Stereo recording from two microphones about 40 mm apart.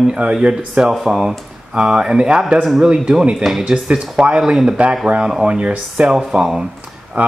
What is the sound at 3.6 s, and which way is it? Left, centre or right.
A man's voice, right.